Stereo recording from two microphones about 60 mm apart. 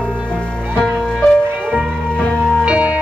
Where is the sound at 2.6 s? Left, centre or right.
Centre.